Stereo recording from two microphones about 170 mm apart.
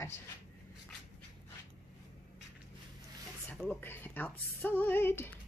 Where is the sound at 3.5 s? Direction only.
10° left (ahead or behind).